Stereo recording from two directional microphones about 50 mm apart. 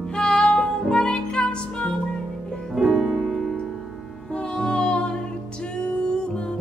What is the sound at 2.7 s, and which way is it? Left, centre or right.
Music, centre.